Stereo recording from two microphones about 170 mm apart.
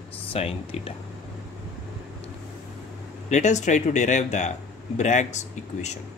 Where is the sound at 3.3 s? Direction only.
45° left (ahead or behind).